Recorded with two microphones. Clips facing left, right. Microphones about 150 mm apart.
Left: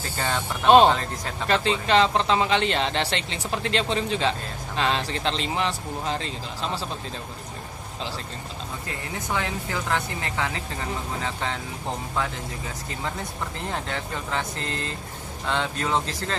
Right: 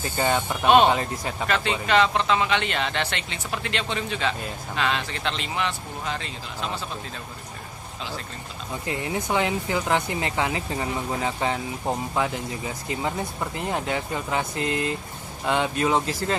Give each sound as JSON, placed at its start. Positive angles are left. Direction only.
{"t": 0.2, "sound": "speech", "side_deg": -10}
{"t": 1.5, "sound": "speech", "side_deg": 30}
{"t": 8.8, "sound": "speech", "side_deg": -15}
{"t": 13.6, "sound": "speech", "side_deg": -10}